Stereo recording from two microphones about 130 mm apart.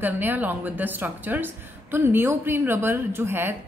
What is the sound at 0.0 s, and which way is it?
A woman's voice, 15° right (ahead or behind).